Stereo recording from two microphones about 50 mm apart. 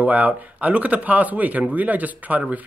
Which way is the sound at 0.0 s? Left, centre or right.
Right.